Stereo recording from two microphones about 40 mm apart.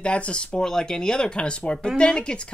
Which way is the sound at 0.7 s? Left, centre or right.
Centre.